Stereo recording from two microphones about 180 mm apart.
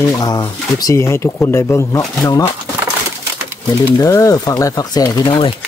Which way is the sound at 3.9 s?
20° left (ahead or behind).